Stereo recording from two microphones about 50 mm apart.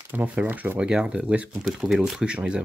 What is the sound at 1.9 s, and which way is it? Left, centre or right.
Speech, centre.